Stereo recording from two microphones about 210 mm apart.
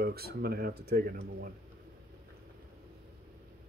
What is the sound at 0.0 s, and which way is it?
Speech, 50° right (ahead or behind).